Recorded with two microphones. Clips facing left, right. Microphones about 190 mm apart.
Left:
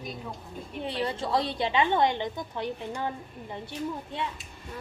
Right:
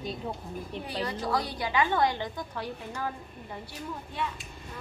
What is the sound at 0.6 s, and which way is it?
A woman's voice, 25° left (ahead or behind).